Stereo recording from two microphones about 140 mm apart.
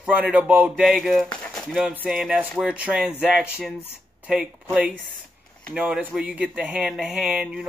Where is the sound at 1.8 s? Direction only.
10° right (ahead or behind).